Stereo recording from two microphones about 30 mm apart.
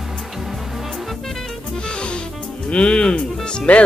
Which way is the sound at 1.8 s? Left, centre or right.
Left.